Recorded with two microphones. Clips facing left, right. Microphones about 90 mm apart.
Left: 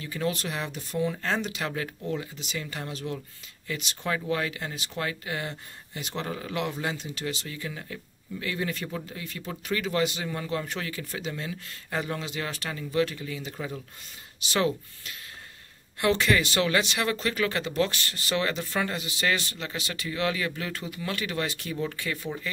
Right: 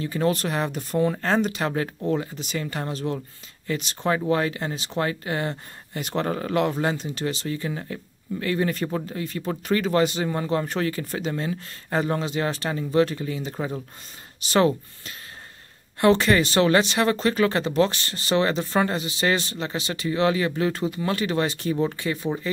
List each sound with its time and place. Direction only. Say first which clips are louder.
0.0 s speech: right 7 dB; 40° right (ahead or behind)